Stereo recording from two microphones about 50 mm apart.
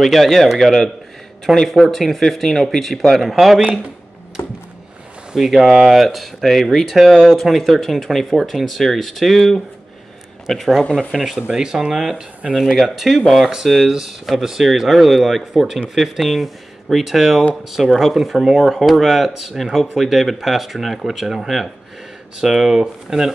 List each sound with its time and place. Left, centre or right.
0.0 s a man's voice: centre
4.4 s a sound: left
5.3 s speech: centre
11.4 s speech: centre
13.8 s speech: centre